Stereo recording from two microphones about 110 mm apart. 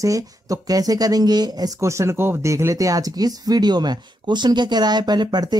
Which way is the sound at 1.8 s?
25° right (ahead or behind).